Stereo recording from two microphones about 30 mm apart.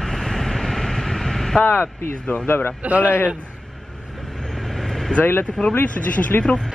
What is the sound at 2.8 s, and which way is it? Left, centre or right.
Speech, right.